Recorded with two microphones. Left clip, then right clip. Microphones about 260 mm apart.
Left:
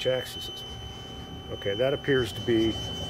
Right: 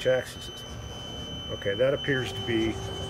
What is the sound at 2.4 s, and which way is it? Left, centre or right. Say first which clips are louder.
Speech: left 2 dB; left.